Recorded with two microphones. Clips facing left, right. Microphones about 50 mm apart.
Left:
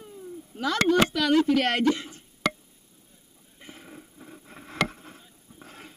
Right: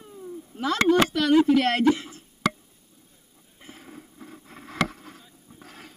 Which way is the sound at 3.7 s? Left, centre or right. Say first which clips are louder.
Right 2 dB; centre.